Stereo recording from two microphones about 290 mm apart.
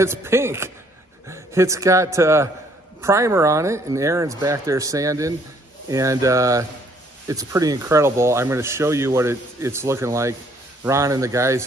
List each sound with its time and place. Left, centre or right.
0.0 s a man's voice: centre